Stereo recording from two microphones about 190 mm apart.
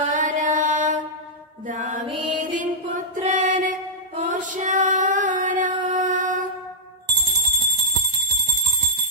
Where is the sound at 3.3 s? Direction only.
45° right (ahead or behind).